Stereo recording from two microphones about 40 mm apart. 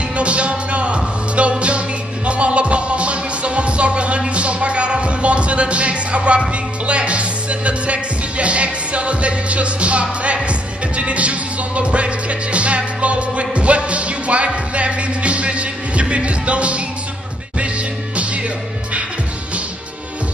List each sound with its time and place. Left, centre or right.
0.1 s music: right